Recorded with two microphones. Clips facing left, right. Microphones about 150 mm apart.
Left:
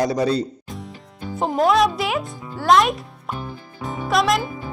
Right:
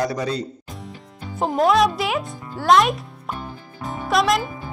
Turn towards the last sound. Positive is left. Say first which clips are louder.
# even
turn(degrees=0)  # may be behind; listen again after turning